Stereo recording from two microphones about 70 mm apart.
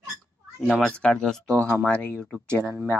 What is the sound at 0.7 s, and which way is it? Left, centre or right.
Speech, centre.